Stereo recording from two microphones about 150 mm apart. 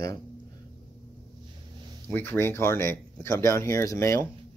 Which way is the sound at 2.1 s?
15° left (ahead or behind).